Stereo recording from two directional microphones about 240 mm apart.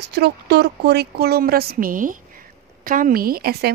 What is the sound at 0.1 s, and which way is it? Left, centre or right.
A woman's voice, right.